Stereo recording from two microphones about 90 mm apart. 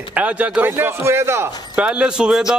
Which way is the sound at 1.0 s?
30° right (ahead or behind).